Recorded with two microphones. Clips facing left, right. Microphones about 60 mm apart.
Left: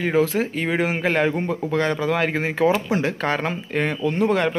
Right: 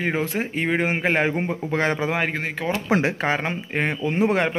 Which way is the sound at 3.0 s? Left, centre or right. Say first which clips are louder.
Even; centre.